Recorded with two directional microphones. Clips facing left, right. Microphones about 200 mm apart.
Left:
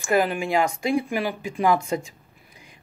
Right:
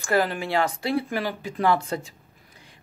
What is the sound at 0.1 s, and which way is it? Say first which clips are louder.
Speech: left 2 dB; 15° left (ahead or behind).